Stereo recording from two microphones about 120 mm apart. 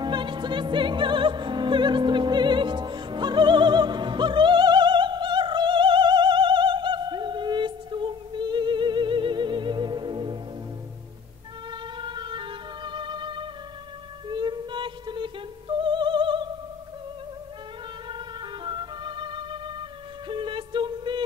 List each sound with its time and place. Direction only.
0.0 s opera: 40° right (ahead or behind)
12.0 s music: 40° right (ahead or behind)
18.0 s music: 40° right (ahead or behind)